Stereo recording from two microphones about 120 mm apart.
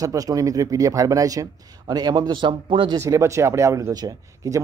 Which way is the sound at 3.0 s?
25° right (ahead or behind).